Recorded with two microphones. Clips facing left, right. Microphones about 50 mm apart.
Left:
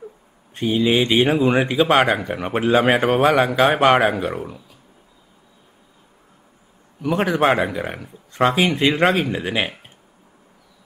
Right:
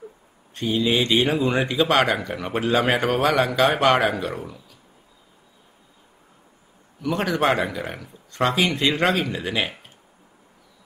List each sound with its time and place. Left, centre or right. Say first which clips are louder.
0.6 s speech: left 3 dB; centre
7.0 s speech: left 4 dB; left